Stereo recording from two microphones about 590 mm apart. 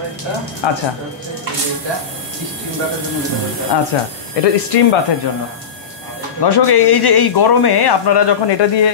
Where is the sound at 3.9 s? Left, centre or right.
Left.